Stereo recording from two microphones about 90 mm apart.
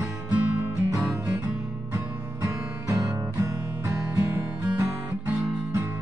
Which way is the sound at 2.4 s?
35° right (ahead or behind).